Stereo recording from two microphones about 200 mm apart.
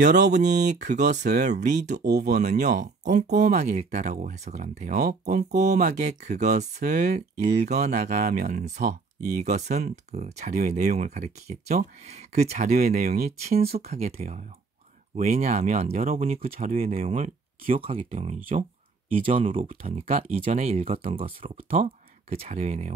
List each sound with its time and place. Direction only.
0.2 s speech: 35° right (ahead or behind)
1.3 s speech: 50° right (ahead or behind)
1.7 s speech: 35° right (ahead or behind)
2.0 s speech: 55° right (ahead or behind)
2.6 s speech: 35° right (ahead or behind)
12.7 s speech: 45° right (ahead or behind)
13.5 s speech: 30° right (ahead or behind)
19.5 s speech: 40° right (ahead or behind)